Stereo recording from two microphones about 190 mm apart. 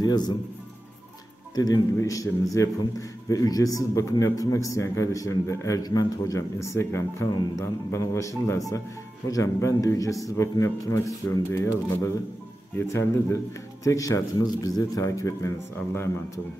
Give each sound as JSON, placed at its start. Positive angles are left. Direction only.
{"t": 0.0, "sound": "a man's voice", "side_deg": 20}
{"t": 1.5, "sound": "a man's voice", "side_deg": 20}